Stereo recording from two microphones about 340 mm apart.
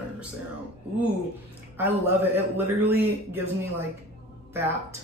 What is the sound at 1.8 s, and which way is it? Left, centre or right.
A man's voice, centre.